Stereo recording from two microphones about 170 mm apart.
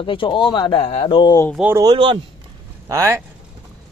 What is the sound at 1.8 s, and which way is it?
Speech, 25° right (ahead or behind).